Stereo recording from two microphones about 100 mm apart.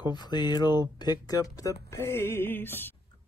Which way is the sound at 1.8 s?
25° left (ahead or behind).